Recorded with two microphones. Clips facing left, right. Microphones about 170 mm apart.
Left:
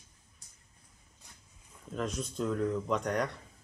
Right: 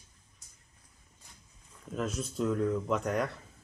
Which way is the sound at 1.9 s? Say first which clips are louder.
Right 1 dB; 5° right (ahead or behind).